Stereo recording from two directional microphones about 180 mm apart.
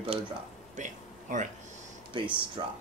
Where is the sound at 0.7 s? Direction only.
45° right (ahead or behind).